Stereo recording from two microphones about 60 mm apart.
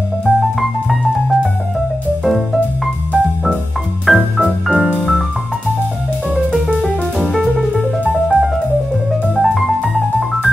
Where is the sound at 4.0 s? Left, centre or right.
Centre.